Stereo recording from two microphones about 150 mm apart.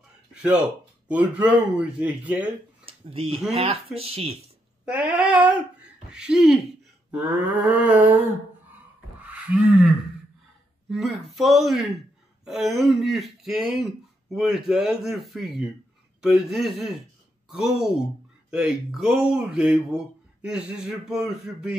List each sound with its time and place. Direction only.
0.3 s a sound: 5° right (ahead or behind)
1.0 s speech: 10° right (ahead or behind)
3.1 s speech: 40° right (ahead or behind)
4.8 s speech: 10° right (ahead or behind)
9.2 s speech: 10° right (ahead or behind)